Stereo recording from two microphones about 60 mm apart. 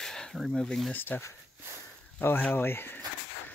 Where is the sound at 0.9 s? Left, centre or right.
Left.